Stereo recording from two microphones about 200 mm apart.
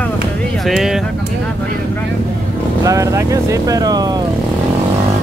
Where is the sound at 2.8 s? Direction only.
15° right (ahead or behind).